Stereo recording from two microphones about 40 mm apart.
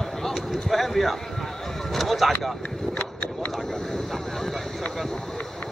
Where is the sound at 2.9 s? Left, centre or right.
Left.